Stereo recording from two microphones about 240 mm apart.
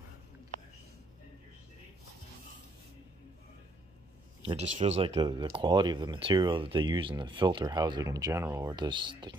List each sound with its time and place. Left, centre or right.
4.5 s speech: right